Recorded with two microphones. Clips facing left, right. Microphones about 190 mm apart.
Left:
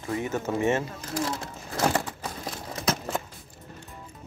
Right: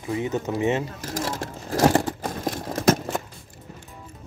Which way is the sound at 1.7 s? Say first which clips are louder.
Right 7 dB; 40° right (ahead or behind).